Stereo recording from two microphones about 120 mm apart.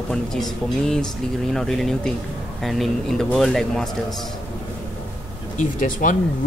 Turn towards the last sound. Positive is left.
turn(degrees=90)